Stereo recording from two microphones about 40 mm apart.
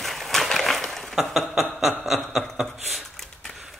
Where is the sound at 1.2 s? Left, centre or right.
Centre.